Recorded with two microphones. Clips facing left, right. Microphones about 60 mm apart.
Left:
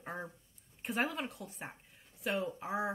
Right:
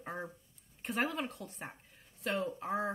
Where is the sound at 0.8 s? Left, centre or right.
Centre.